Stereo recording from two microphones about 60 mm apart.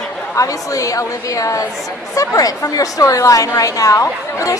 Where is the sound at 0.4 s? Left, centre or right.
Left.